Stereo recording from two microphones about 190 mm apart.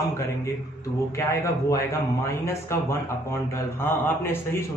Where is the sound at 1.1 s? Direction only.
15° left (ahead or behind).